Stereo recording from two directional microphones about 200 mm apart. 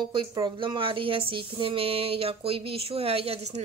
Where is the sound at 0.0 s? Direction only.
25° right (ahead or behind).